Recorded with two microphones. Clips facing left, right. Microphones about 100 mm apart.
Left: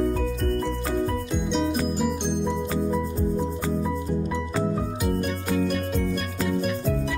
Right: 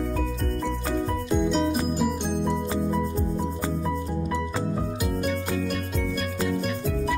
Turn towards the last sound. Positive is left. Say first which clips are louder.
# left 1 dB
turn(degrees=0)  # may be behind; listen again after turning